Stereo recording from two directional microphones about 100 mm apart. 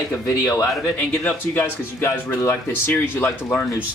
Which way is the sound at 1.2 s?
20° left (ahead or behind).